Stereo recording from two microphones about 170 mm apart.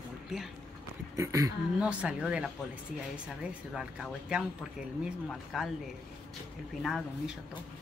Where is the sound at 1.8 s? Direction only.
5° right (ahead or behind).